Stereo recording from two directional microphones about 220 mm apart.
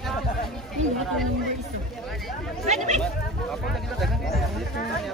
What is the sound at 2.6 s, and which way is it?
Speech, 30° right (ahead or behind).